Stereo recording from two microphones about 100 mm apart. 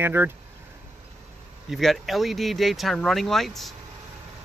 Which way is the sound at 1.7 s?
Centre (ahead or behind).